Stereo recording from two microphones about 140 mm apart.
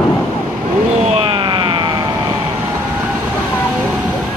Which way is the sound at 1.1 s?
40° right (ahead or behind).